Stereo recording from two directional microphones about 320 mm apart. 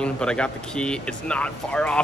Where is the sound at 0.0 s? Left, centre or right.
Centre.